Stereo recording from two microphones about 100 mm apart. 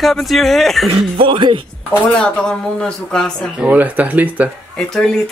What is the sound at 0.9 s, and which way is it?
Speech, 65° right (ahead or behind).